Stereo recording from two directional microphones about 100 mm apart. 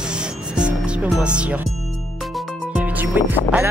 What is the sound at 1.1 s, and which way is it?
Speech, 10° right (ahead or behind).